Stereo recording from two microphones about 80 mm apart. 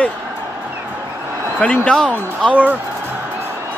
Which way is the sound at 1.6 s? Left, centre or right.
Centre.